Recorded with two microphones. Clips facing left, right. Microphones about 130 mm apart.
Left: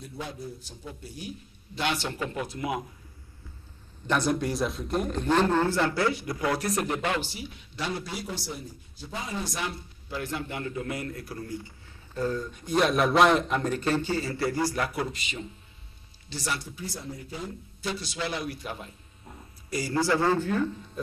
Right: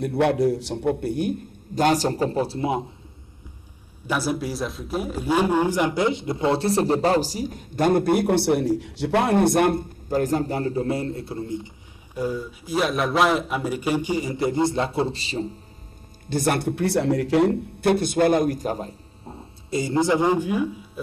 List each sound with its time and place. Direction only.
0.0 s a man's voice: 70° right (ahead or behind); by 2.9 s 30° right (ahead or behind)
4.1 s a man's voice: 5° right (ahead or behind); by 15.5 s 35° right (ahead or behind)
16.3 s speech: 55° right (ahead or behind); by 21.0 s 10° right (ahead or behind)